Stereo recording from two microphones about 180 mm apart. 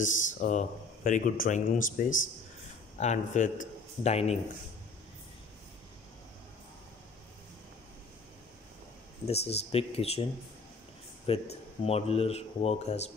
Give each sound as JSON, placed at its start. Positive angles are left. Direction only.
{"t": 0.0, "sound": "a man's voice", "side_deg": 45}
{"t": 9.2, "sound": "speech", "side_deg": 35}
{"t": 11.3, "sound": "speech", "side_deg": 30}